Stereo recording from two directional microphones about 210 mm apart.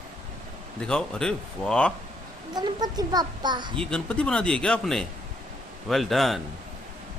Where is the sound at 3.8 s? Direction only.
5° left (ahead or behind).